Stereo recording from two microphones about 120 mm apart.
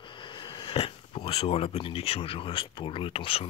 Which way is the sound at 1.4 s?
60° left (ahead or behind).